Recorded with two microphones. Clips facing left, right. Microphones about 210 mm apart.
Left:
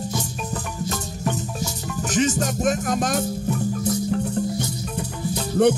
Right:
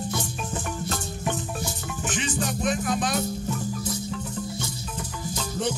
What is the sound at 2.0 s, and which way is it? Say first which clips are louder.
Music: left 7 dB; 40° left (ahead or behind).